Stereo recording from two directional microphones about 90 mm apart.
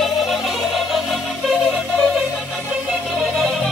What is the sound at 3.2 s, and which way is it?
Music, centre (ahead or behind).